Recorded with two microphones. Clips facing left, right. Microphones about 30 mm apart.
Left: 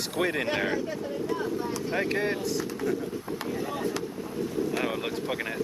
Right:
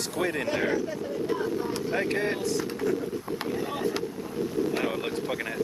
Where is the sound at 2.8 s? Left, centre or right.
Right.